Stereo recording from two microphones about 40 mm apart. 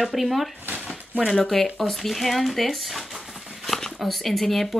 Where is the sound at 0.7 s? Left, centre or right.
Centre.